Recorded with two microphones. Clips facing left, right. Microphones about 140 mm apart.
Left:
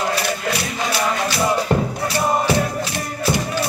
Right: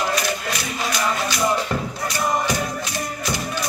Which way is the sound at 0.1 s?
30° left (ahead or behind).